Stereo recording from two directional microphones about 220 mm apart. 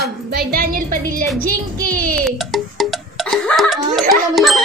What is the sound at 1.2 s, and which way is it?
Speech, 40° right (ahead or behind).